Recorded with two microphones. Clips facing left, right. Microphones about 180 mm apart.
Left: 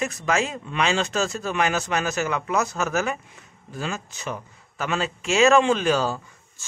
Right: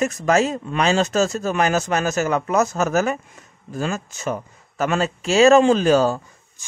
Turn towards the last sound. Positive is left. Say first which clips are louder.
# even
turn(degrees=-15)  # may be behind; listen again after turning